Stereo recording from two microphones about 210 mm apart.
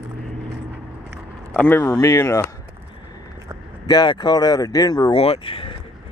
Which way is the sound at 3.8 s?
20° left (ahead or behind).